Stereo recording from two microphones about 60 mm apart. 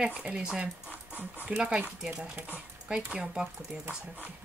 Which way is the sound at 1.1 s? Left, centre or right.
Right.